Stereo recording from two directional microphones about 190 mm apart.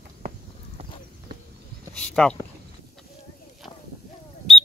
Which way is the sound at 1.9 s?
5° left (ahead or behind).